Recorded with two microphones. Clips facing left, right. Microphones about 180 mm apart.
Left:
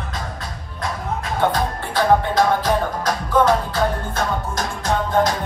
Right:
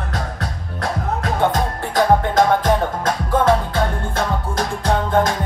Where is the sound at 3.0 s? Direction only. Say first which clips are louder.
Even; 25° right (ahead or behind).